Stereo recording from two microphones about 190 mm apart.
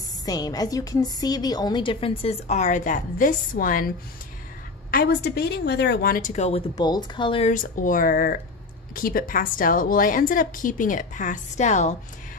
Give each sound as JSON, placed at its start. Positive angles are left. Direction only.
{"t": 0.2, "sound": "a woman's voice", "side_deg": 20}
{"t": 4.9, "sound": "a woman's voice", "side_deg": 60}
{"t": 6.7, "sound": "a woman's voice", "side_deg": 20}
{"t": 7.5, "sound": "a woman's voice", "side_deg": 45}